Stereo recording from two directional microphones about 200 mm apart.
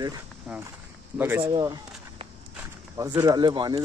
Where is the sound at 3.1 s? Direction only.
20° right (ahead or behind).